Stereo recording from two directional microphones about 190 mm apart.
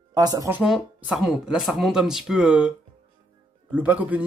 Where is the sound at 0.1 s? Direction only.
20° right (ahead or behind).